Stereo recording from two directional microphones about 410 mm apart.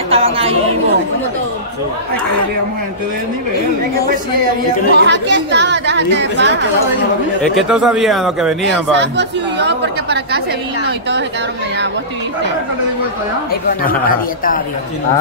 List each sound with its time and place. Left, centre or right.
0.1 s chatter: centre
4.9 s speech: right
7.5 s speech: centre
8.9 s speech: right
13.8 s speech: left